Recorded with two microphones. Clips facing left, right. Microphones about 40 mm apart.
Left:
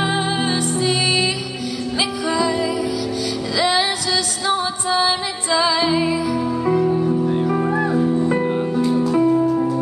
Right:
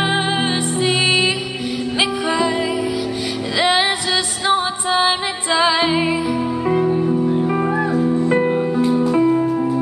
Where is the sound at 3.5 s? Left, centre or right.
Right.